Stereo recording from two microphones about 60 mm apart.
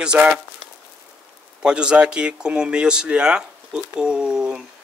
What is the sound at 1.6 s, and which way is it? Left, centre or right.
Speech, centre.